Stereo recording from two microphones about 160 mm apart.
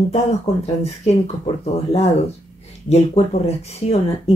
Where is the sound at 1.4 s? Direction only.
40° left (ahead or behind).